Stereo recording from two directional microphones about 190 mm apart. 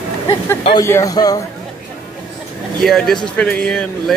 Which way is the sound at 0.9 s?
15° left (ahead or behind).